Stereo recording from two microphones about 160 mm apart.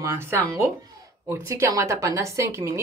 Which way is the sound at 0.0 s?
15° right (ahead or behind).